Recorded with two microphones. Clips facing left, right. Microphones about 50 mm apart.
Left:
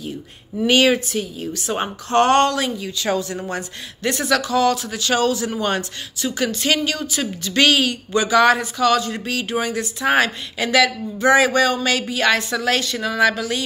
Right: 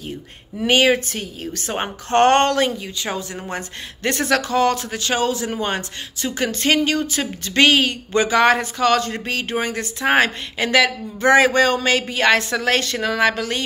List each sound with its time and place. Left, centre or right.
0.7 s a woman's voice: right
1.1 s a woman's voice: right
3.0 s a woman's voice: right
4.0 s speech: right